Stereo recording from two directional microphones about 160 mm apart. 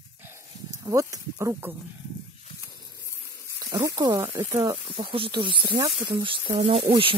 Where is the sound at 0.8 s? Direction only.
20° right (ahead or behind).